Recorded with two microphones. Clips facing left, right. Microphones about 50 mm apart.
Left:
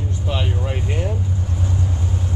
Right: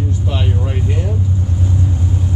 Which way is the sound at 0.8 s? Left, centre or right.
Centre.